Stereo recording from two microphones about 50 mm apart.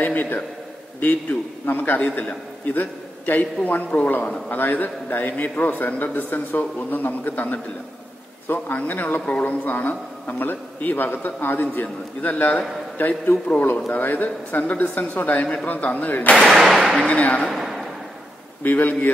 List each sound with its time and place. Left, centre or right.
0.0 s a man's voice: left
16.4 s speech: centre
16.9 s speech: left
17.5 s a sound: centre
18.6 s a man's voice: left